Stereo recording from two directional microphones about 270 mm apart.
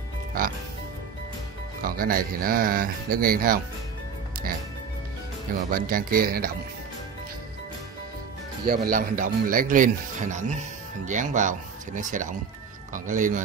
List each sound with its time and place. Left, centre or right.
1.8 s speech: right
5.7 s speech: right
8.6 s speech: right